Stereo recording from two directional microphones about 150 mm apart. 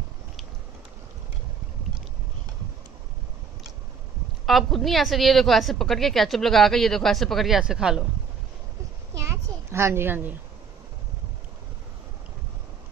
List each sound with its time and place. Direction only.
4.5 s a woman's voice: centre (ahead or behind)
9.7 s a woman's voice: 15° right (ahead or behind)